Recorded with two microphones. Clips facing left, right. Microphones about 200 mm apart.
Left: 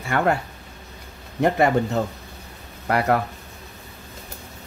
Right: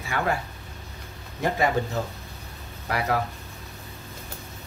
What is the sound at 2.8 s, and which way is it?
Speech, 55° left (ahead or behind).